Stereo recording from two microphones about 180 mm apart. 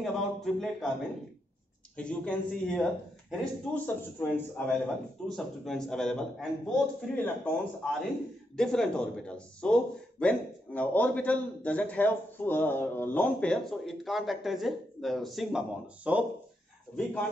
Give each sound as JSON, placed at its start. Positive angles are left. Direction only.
{"t": 0.0, "sound": "a man's voice", "side_deg": 0}
{"t": 2.0, "sound": "a man's voice", "side_deg": 5}
{"t": 16.9, "sound": "speech", "side_deg": 10}